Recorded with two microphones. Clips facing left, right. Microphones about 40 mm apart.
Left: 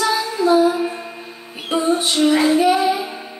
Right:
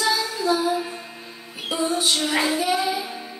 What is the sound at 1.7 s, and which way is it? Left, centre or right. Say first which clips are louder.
Music: left 6 dB; left.